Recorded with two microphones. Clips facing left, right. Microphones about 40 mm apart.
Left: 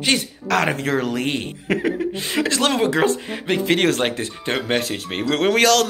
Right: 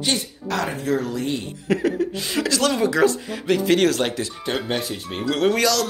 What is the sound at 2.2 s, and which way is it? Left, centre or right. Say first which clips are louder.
Speech: left 1 dB; left.